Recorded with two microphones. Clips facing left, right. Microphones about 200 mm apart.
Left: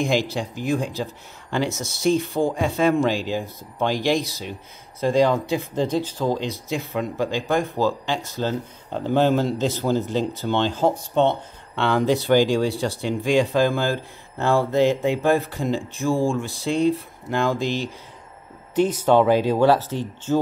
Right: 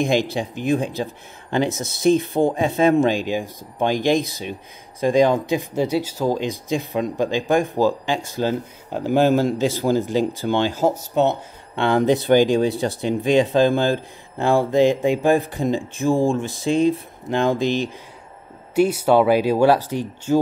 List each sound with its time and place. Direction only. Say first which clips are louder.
0.0 s speech: right 2 dB; 20° right (ahead or behind)
2.0 s speech: right 3 dB; 20° right (ahead or behind)